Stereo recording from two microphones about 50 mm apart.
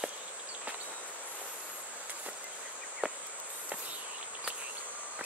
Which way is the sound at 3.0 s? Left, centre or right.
Centre.